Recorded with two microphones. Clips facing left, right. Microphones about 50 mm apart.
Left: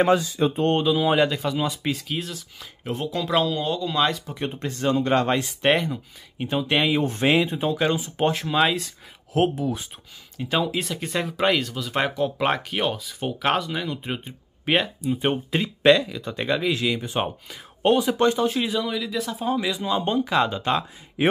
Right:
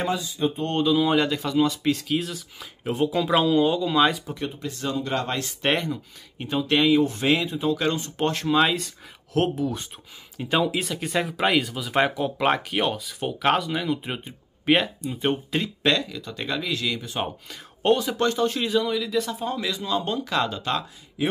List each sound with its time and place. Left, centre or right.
0.2 s speech: left
0.7 s speech: centre
4.6 s speech: left
5.6 s speech: centre
6.9 s speech: left
7.7 s speech: centre
15.8 s speech: centre
16.2 s speech: left
17.5 s speech: centre
18.0 s speech: centre